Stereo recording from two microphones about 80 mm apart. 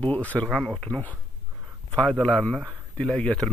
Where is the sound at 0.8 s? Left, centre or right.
Centre.